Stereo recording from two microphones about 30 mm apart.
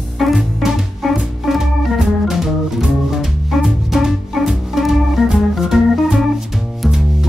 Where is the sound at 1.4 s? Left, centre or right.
Centre.